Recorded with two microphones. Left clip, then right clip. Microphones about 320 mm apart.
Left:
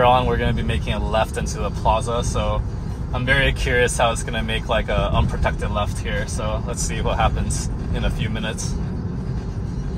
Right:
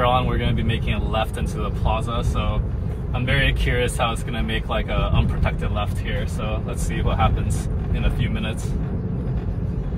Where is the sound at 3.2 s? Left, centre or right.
Left.